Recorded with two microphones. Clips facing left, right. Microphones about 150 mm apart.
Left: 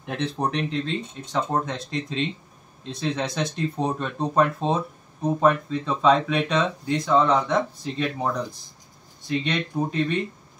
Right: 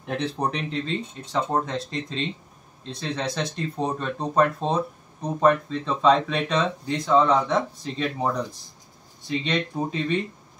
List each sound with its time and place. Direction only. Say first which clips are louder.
0.0 s speech: even; centre (ahead or behind)